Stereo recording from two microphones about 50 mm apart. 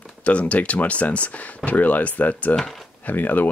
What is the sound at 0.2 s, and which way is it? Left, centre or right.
Speech, left.